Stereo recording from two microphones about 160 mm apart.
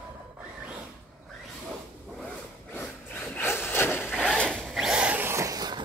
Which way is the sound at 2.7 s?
10° left (ahead or behind).